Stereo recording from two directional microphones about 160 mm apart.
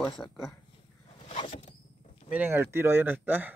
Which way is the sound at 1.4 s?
35° left (ahead or behind).